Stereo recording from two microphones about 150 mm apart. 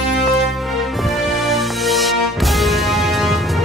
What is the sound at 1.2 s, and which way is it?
Music, centre (ahead or behind).